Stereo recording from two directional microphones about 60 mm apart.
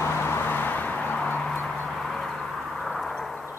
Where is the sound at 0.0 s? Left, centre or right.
Left.